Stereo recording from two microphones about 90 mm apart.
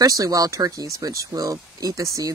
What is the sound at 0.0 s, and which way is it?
Speech, 40° right (ahead or behind).